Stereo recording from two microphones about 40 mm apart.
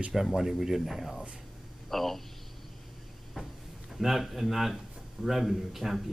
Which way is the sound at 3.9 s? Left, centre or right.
Centre.